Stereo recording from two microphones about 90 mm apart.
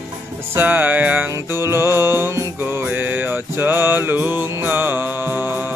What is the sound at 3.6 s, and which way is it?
Music, 25° right (ahead or behind).